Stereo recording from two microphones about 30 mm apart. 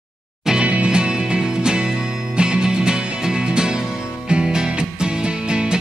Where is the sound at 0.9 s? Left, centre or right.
Right.